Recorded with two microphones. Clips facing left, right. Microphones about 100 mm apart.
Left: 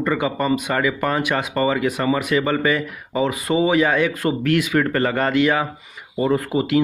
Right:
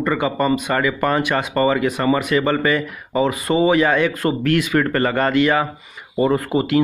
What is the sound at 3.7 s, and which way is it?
Speech, 10° left (ahead or behind).